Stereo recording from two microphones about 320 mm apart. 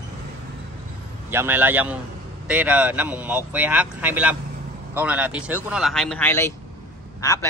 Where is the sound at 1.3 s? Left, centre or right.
Centre.